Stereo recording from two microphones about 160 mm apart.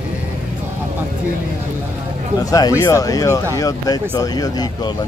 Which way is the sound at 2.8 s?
20° left (ahead or behind).